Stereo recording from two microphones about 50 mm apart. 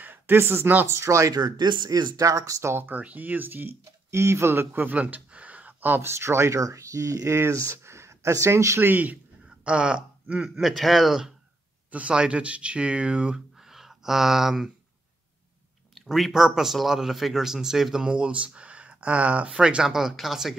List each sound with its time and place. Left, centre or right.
0.0 s a sound: right
0.4 s speech: right
0.8 s speech: right
2.9 s speech: right
4.1 s speech: right
4.8 s a sound: right
6.0 s speech: right
8.7 s speech: right
9.7 s a man's voice: centre
10.6 s speech: centre
11.9 s speech: right
13.6 s a sound: centre
15.9 s a man's voice: centre
18.0 s a man's voice: right; by 20.5 s centre